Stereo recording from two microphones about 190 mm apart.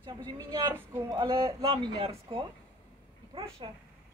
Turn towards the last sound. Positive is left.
turn(degrees=-30)  # may be behind; listen again after turning